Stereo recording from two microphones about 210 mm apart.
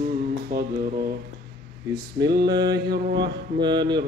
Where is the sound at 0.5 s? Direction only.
50° right (ahead or behind).